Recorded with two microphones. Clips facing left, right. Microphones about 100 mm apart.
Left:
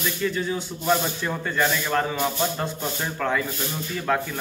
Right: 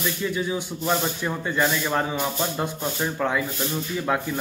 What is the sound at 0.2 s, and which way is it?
Speech, 15° right (ahead or behind).